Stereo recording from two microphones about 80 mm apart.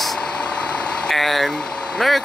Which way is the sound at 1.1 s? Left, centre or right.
Centre.